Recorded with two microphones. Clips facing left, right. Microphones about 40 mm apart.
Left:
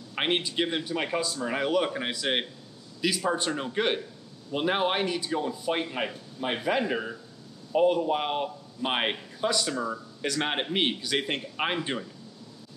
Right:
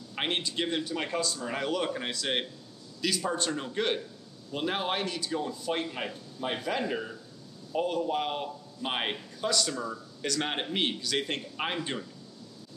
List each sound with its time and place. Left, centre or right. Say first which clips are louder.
0.1 s a man's voice: left 4 dB; centre